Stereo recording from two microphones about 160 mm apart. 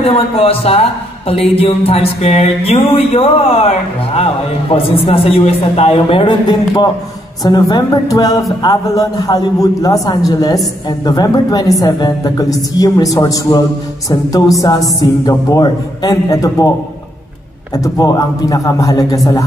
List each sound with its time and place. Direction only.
0.0 s a man's voice: 35° left (ahead or behind); by 16.7 s 20° left (ahead or behind)
17.7 s a woman's voice: 20° left (ahead or behind)